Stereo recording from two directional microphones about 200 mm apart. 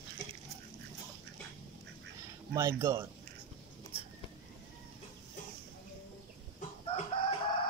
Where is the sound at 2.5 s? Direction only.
15° right (ahead or behind).